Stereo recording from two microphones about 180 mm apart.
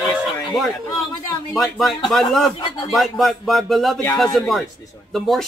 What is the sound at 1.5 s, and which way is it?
A man's voice, centre (ahead or behind).